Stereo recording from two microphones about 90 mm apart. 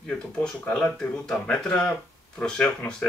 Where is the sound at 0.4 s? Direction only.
10° left (ahead or behind).